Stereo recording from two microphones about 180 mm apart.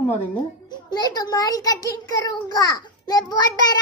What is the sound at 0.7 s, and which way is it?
A child's voice, 20° left (ahead or behind).